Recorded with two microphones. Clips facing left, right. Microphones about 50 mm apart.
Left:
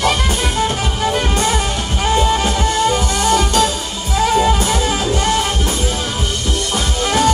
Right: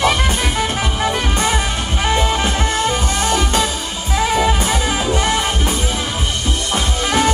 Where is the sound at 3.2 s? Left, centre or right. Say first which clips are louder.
Left 3 dB; right.